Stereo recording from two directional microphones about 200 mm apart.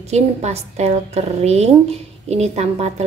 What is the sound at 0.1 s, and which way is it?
A woman's voice, 35° right (ahead or behind).